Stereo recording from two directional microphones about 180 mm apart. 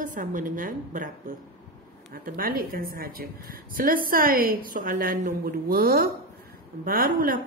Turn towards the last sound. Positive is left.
turn(degrees=-50)  # may be behind; listen again after turning